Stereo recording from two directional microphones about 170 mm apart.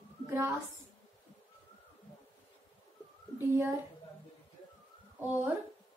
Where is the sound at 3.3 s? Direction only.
15° right (ahead or behind).